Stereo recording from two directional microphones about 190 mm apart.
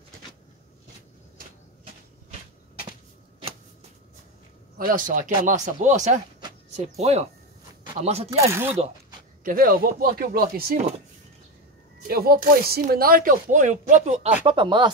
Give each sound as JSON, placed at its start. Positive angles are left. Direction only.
{"t": 4.7, "sound": "speech", "side_deg": -45}
{"t": 8.5, "sound": "speech", "side_deg": -10}
{"t": 9.4, "sound": "speech", "side_deg": -50}
{"t": 12.1, "sound": "speech", "side_deg": -55}
{"t": 14.4, "sound": "speech", "side_deg": -25}